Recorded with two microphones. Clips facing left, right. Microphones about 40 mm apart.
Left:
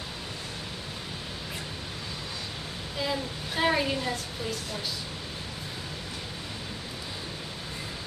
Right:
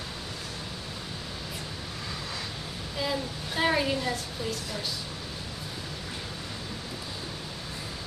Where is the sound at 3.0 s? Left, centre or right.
Centre.